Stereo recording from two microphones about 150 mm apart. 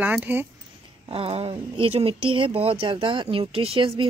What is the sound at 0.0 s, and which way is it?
Speech, 10° right (ahead or behind).